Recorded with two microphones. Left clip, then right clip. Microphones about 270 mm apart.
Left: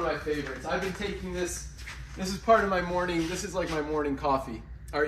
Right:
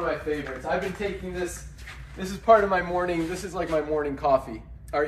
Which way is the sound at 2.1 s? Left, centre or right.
Centre.